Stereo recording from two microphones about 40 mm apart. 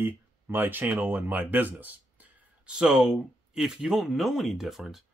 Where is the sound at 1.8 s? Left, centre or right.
Right.